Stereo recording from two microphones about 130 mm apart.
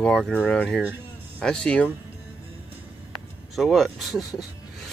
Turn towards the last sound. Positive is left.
turn(degrees=0)  # may be behind; listen again after turning